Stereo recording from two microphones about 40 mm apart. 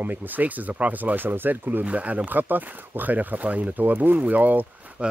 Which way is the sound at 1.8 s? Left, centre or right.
Right.